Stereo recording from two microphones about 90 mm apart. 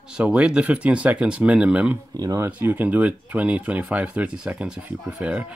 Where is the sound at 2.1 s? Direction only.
45° right (ahead or behind).